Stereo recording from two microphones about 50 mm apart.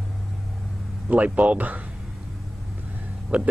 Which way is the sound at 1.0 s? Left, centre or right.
Right.